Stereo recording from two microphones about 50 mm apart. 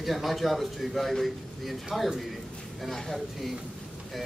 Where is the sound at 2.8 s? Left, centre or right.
Centre.